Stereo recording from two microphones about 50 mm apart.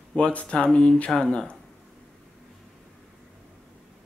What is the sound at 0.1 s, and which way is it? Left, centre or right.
Speech, left.